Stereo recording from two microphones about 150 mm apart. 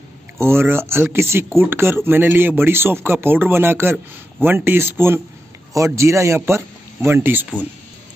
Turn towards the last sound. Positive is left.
turn(degrees=-10)  # may be behind; listen again after turning